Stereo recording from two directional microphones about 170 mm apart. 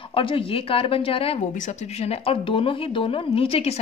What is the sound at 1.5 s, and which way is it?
Speech, 45° left (ahead or behind).